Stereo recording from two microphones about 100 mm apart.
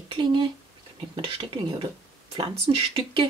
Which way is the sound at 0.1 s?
55° right (ahead or behind).